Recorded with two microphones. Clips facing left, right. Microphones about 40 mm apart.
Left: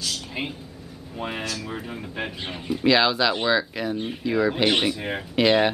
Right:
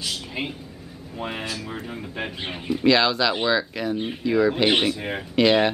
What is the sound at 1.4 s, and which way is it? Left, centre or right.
Speech, centre.